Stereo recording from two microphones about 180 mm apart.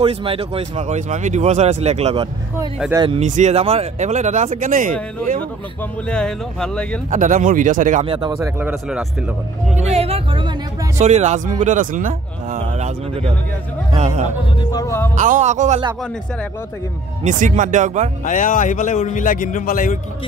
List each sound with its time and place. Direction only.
0.0 s speech: 30° right (ahead or behind)
2.9 s speech: 25° right (ahead or behind)
3.2 s speech: 40° right (ahead or behind)
6.0 s speech: 5° left (ahead or behind)
7.1 s speech: 45° right (ahead or behind)
8.0 s speech: 30° right (ahead or behind)
8.4 s speech: 10° right (ahead or behind)
9.8 s speech: 35° right (ahead or behind)
12.5 s speech: 35° right (ahead or behind)
14.7 s speech: 15° left (ahead or behind)
15.1 s speech: 45° right (ahead or behind)
17.2 s speech: 45° right (ahead or behind)
18.2 s a man's voice: 45° left (ahead or behind)